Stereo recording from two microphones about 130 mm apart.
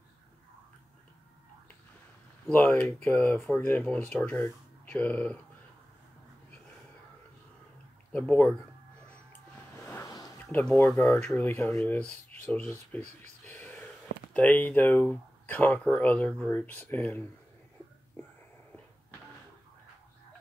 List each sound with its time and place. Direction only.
2.6 s speech: 10° left (ahead or behind)
8.1 s speech: 15° left (ahead or behind)
10.0 s a sound: 30° left (ahead or behind)
10.5 s speech: 10° left (ahead or behind)
11.2 s speech: 15° left (ahead or behind)
13.0 s speech: 60° right (ahead or behind)
13.6 s a sound: 15° left (ahead or behind)
14.3 s speech: 10° left (ahead or behind)